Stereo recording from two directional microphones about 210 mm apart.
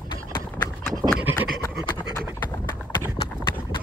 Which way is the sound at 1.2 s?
5° right (ahead or behind).